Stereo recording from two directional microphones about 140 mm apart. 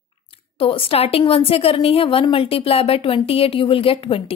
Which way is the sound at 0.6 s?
45° left (ahead or behind).